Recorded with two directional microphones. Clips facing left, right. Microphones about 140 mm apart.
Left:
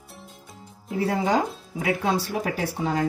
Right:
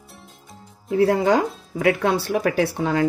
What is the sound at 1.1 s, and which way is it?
Speech, 70° right (ahead or behind).